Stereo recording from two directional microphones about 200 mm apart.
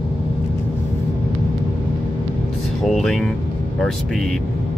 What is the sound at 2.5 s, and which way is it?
Speech, centre (ahead or behind).